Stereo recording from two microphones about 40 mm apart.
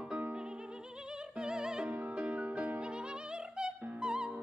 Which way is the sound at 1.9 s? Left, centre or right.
Right.